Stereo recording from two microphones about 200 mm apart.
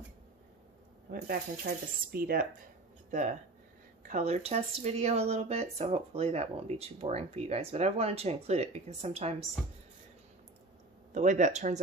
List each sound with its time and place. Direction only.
1.1 s speech: 50° right (ahead or behind)
3.1 s speech: 35° right (ahead or behind)
11.1 s speech: 35° right (ahead or behind)